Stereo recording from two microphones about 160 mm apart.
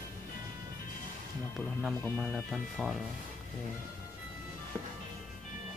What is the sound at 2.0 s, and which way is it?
Speech, 10° left (ahead or behind).